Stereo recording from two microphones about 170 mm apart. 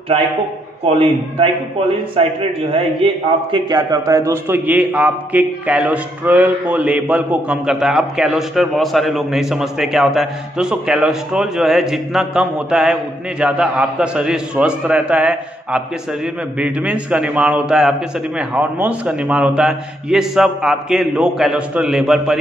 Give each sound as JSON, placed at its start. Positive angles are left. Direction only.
{"t": 0.8, "sound": "a man's voice", "side_deg": -35}
{"t": 3.5, "sound": "a man's voice", "side_deg": -20}